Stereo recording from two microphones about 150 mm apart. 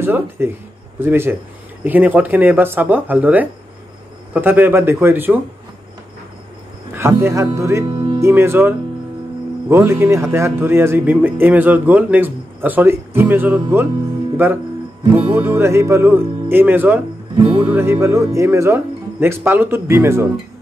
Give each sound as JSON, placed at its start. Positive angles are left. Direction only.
{"t": 0.0, "sound": "speech", "side_deg": -15}
{"t": 6.9, "sound": "speech", "side_deg": -15}
{"t": 14.3, "sound": "music", "side_deg": -15}
{"t": 15.0, "sound": "speech", "side_deg": -15}